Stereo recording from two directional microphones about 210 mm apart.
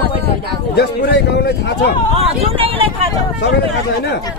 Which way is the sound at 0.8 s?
50° left (ahead or behind).